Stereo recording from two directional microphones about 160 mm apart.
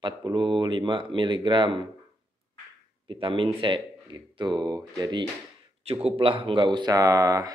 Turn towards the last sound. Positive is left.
turn(degrees=-20)  # may be behind; listen again after turning